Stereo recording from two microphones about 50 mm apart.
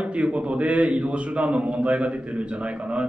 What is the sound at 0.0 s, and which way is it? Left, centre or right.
Speech, right.